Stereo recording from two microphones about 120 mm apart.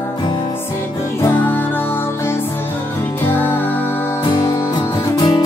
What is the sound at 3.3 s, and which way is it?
Music, 15° left (ahead or behind).